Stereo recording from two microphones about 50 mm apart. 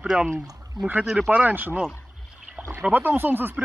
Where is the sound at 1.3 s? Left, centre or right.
Right.